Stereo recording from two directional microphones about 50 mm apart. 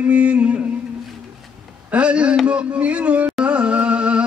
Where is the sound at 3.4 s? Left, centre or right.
Right.